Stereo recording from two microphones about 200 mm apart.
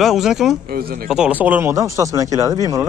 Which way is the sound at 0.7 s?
50° right (ahead or behind).